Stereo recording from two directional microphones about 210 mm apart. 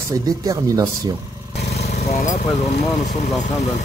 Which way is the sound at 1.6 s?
55° left (ahead or behind).